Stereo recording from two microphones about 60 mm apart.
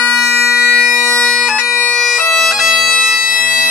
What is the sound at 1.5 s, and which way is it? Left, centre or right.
Bagpipes, centre.